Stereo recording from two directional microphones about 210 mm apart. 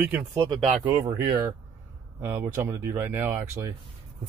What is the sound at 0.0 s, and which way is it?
Speech, 10° right (ahead or behind).